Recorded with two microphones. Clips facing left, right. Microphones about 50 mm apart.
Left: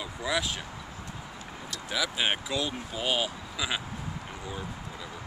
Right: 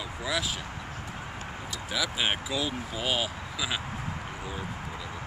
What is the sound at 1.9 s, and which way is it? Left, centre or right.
Speech, centre.